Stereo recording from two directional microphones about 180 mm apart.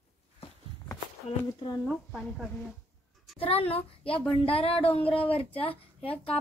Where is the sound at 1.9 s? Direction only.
Centre (ahead or behind).